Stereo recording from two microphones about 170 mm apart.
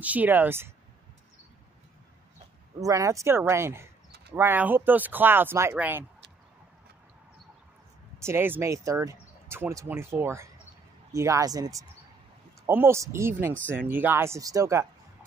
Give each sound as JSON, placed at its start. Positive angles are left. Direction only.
{"t": 0.0, "sound": "speech", "side_deg": -10}
{"t": 2.8, "sound": "speech", "side_deg": -20}
{"t": 8.2, "sound": "speech", "side_deg": -15}